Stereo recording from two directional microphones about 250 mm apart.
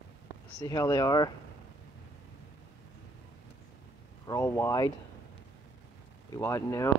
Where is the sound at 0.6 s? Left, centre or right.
Centre.